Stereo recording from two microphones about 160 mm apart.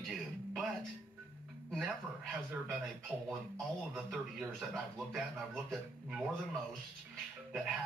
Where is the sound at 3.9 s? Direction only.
Centre (ahead or behind).